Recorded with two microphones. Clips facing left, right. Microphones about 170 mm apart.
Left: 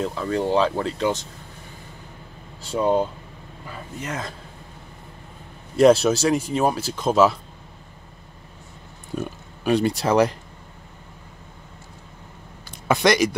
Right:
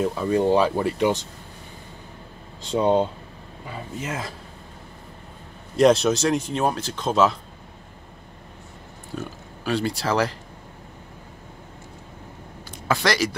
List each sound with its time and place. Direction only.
0.0 s speech: 15° right (ahead or behind)
2.7 s speech: 25° right (ahead or behind)
4.0 s speech: 5° right (ahead or behind)
5.8 s speech: 5° left (ahead or behind)
9.7 s speech: 20° left (ahead or behind)
12.8 s speech: 20° left (ahead or behind)